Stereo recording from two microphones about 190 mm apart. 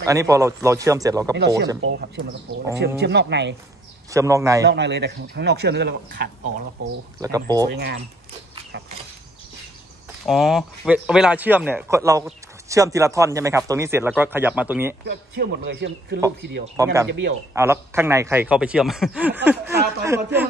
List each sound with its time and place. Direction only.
0.0 s speech: 15° right (ahead or behind)
1.8 s speech: 75° right (ahead or behind)
3.0 s speech: 65° right (ahead or behind)
4.1 s speech: 15° right (ahead or behind)
4.6 s speech: 65° right (ahead or behind)
7.2 s speech: 20° right (ahead or behind)
7.7 s speech: 55° right (ahead or behind)
10.2 s speech: centre (ahead or behind)
15.0 s speech: 55° right (ahead or behind)
16.8 s speech: 20° right (ahead or behind)
17.1 s speech: 70° right (ahead or behind)
17.6 s speech: 15° right (ahead or behind)